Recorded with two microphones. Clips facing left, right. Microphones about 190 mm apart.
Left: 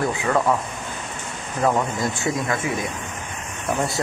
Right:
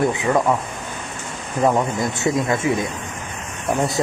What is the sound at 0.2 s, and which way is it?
Speech, 15° right (ahead or behind).